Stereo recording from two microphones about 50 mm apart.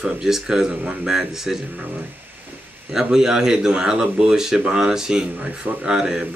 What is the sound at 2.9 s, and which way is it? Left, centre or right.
Speech, centre.